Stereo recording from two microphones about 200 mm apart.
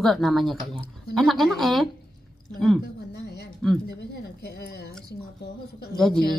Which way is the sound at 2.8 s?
55° left (ahead or behind).